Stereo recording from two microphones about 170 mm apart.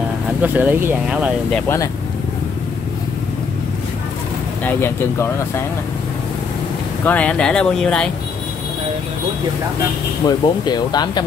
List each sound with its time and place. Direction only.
0.4 s speech: 10° right (ahead or behind)
4.6 s speech: 15° left (ahead or behind)
7.1 s speech: 5° left (ahead or behind)
10.2 s speech: 25° left (ahead or behind)